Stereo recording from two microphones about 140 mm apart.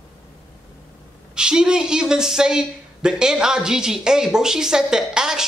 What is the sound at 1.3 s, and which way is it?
Speech, 5° right (ahead or behind).